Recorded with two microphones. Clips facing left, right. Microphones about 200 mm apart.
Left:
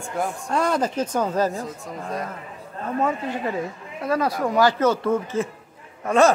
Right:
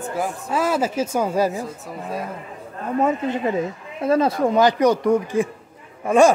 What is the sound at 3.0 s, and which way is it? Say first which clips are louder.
Speech: right 4 dB; 20° right (ahead or behind).